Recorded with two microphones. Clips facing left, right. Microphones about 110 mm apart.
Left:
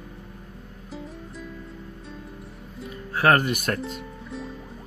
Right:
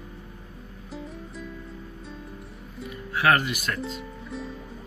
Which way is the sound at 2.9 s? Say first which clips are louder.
Left 2 dB; 40° left (ahead or behind).